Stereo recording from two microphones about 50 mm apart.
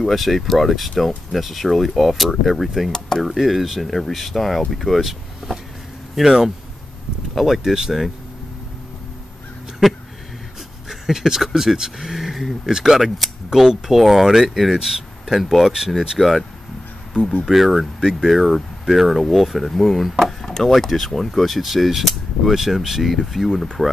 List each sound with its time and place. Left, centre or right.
0.0 s speech: centre
9.8 s speech: centre
17.2 s speech: left
17.5 s speech: centre